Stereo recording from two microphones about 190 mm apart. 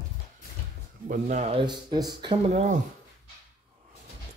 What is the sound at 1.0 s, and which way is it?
Speech, 40° right (ahead or behind).